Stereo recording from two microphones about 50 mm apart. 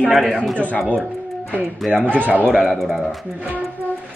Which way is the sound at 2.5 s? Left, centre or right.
Centre.